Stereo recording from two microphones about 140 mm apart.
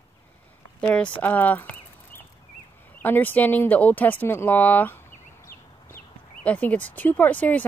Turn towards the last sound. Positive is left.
turn(degrees=10)  # may be behind; listen again after turning